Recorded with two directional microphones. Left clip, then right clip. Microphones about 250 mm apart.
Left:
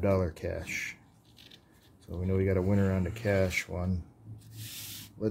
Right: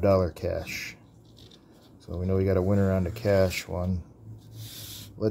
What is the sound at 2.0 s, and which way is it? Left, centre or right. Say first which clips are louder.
Speech: right 4 dB; centre.